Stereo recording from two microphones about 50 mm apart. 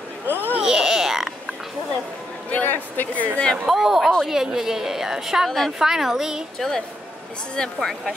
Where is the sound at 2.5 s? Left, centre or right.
Left.